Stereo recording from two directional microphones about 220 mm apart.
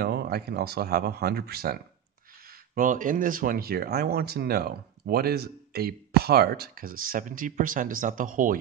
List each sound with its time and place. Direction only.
0.0 s speech: 45° right (ahead or behind)